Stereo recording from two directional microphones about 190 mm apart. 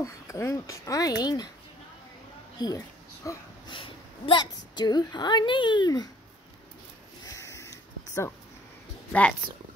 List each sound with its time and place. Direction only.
0.0 s speech: 15° left (ahead or behind)
2.6 s a woman's voice: 20° left (ahead or behind)
7.2 s a sound: 15° left (ahead or behind)